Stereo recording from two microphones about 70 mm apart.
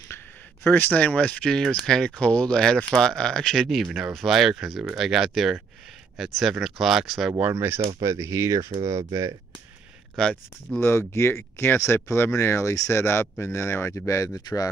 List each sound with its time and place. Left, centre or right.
0.7 s speech: left
1.0 s speech: centre
7.5 s speech: right
7.8 s speech: right
10.2 s speech: centre
10.8 s speech: left